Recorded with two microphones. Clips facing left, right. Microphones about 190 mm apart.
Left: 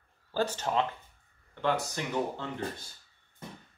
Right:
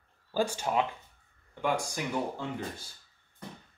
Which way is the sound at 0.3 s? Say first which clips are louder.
Right 1 dB; 10° right (ahead or behind).